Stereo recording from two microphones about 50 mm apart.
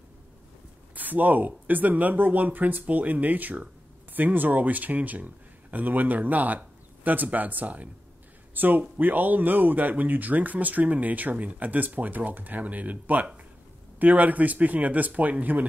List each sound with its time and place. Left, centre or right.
0.9 s speech: right